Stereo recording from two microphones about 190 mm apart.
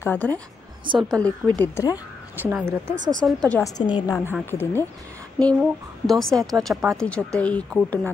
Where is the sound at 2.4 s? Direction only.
10° right (ahead or behind).